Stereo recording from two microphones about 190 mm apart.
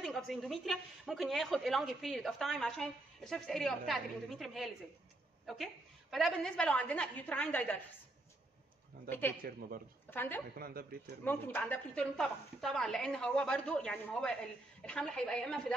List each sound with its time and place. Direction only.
0.0 s a woman's voice: centre (ahead or behind)
9.4 s a man's voice: 50° right (ahead or behind)
10.0 s a woman's voice: 10° left (ahead or behind)
10.6 s a man's voice: 50° right (ahead or behind)
11.2 s a woman's voice: 10° left (ahead or behind)